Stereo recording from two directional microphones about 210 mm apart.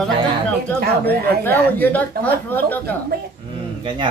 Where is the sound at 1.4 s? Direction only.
10° left (ahead or behind).